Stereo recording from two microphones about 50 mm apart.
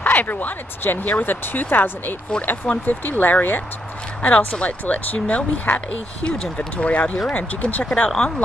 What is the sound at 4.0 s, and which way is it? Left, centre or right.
Speech, left.